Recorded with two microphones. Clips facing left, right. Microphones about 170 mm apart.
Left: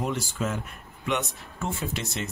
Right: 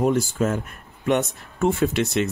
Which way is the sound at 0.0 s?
50° right (ahead or behind).